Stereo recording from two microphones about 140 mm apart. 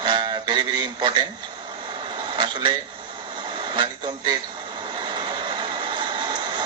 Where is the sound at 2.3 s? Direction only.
35° right (ahead or behind).